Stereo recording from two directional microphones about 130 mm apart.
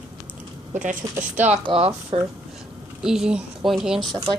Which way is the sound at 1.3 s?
60° right (ahead or behind).